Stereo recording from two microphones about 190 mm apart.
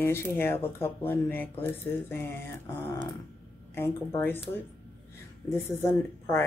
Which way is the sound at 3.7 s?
10° left (ahead or behind).